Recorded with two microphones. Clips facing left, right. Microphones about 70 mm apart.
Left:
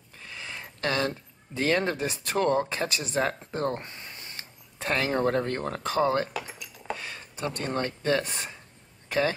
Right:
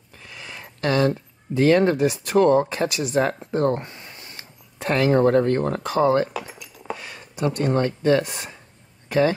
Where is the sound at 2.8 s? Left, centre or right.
Left.